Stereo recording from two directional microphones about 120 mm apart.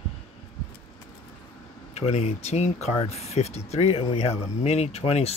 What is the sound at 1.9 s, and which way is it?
Speech, 65° left (ahead or behind).